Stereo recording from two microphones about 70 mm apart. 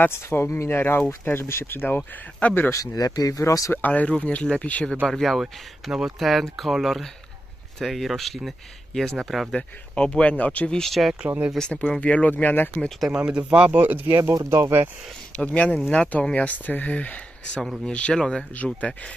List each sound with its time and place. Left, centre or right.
0.0 s speech: left
2.7 s speech: left
3.7 s speech: left
5.0 s speech: centre
5.4 s speech: centre
9.5 s speech: centre
10.7 s speech: centre
11.2 s speech: right
11.5 s speech: centre
13.1 s speech: centre
14.3 s speech: right
15.3 s speech: centre